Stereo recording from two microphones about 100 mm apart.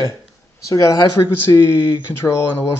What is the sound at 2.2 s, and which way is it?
Speech, 30° left (ahead or behind).